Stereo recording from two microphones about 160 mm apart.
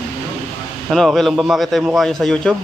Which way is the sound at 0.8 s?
Centre (ahead or behind).